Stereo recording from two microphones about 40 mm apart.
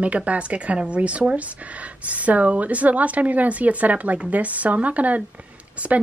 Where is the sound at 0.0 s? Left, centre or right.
Right.